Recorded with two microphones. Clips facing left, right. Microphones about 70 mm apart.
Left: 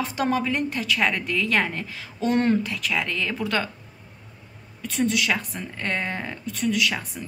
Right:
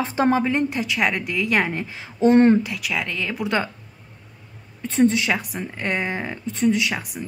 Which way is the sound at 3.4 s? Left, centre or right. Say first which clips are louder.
Right 4 dB; centre.